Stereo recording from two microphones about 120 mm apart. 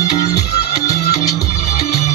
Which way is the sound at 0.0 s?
30° left (ahead or behind).